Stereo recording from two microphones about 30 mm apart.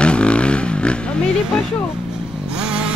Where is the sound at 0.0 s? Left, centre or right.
Left.